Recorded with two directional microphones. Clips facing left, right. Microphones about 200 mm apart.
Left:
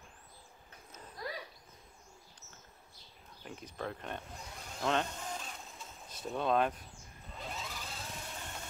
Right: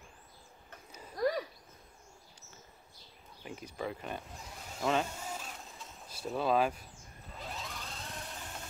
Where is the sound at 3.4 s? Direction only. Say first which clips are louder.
Right 2 dB; 5° right (ahead or behind).